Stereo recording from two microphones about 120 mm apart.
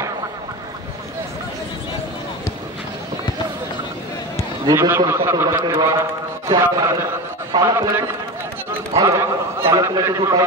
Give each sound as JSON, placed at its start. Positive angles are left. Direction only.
{"t": 4.7, "sound": "a man's voice", "side_deg": -25}